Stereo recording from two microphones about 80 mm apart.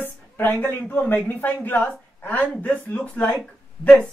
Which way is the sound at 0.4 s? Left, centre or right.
Centre.